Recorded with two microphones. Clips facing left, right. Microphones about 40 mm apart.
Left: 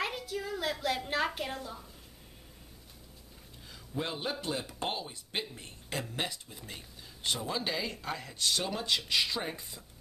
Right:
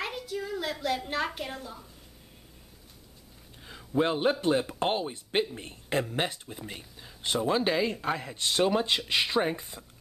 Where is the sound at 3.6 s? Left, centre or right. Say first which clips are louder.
Right 10 dB; right.